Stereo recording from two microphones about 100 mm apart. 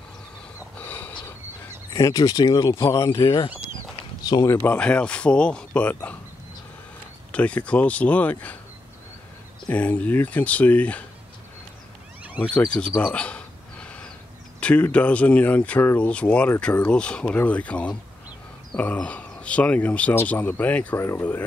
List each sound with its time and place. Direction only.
0.7 s a sound: 15° left (ahead or behind)
2.0 s speech: 40° left (ahead or behind)
2.7 s speech: 30° left (ahead or behind)
4.3 s speech: 30° left (ahead or behind)
4.6 s speech: 15° left (ahead or behind)
7.3 s speech: 15° left (ahead or behind)
9.7 s speech: 15° left (ahead or behind)
12.5 s bird: 10° left (ahead or behind)
14.6 s speech: 10° left (ahead or behind)